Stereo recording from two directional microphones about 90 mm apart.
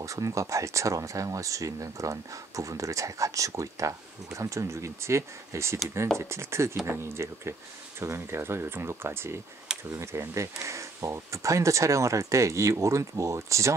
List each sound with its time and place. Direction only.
0.0 s speech: 35° right (ahead or behind)